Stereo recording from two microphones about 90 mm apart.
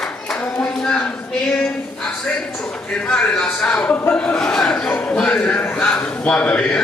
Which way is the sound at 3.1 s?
10° left (ahead or behind).